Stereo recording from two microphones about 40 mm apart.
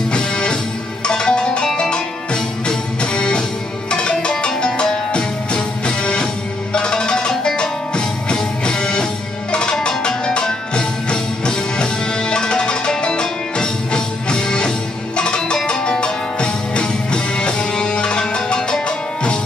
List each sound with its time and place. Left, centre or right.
0.1 s music: left